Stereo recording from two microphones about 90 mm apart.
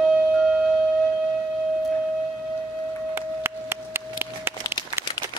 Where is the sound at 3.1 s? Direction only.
25° right (ahead or behind).